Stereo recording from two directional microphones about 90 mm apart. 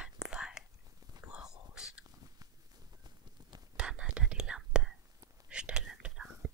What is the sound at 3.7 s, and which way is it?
Whispering, 10° right (ahead or behind).